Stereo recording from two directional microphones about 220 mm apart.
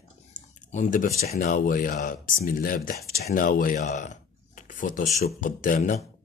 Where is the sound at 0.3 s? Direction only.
35° left (ahead or behind).